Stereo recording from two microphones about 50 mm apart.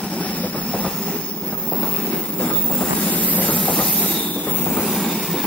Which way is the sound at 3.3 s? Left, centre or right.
Left.